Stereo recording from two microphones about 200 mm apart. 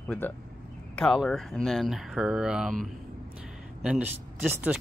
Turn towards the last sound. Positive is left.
turn(degrees=-10)  # may be behind; listen again after turning